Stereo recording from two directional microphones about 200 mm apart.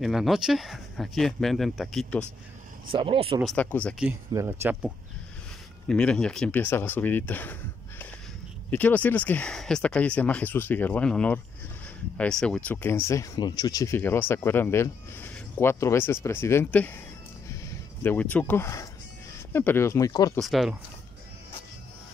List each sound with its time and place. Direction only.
0.0 s speech: centre (ahead or behind)
2.9 s speech: 25° right (ahead or behind)
3.4 s speech: 5° left (ahead or behind)
4.3 s speech: 15° right (ahead or behind)
5.9 s speech: 5° left (ahead or behind)
8.6 s speech: 10° left (ahead or behind)
18.0 s speech: 10° left (ahead or behind)
20.3 s speech: centre (ahead or behind)